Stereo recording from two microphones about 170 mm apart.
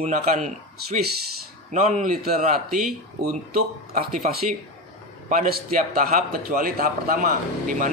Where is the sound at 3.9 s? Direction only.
50° right (ahead or behind).